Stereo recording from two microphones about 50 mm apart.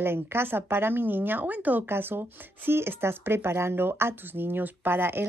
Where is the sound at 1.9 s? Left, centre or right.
Right.